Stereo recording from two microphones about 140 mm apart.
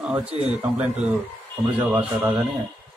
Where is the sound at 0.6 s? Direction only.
10° right (ahead or behind).